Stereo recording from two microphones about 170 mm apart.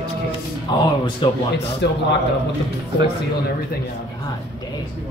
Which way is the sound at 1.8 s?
90° left.